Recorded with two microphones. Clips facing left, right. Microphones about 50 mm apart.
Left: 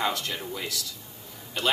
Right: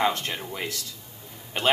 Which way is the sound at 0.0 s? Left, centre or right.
Right.